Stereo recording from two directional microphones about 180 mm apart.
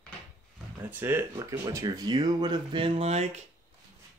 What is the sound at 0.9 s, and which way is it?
Speech, 10° right (ahead or behind).